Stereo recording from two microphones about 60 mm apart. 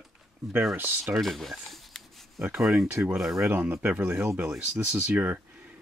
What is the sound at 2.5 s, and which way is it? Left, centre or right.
Speech, centre.